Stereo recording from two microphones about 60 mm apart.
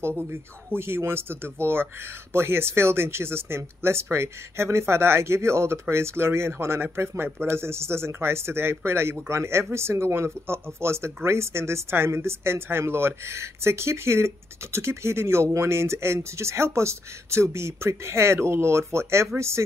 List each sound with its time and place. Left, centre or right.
0.0 s speech: right